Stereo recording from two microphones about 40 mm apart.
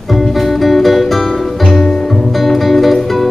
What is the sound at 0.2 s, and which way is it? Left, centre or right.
Music, centre.